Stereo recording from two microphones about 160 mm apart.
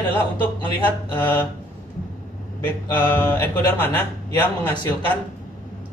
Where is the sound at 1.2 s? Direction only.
10° left (ahead or behind).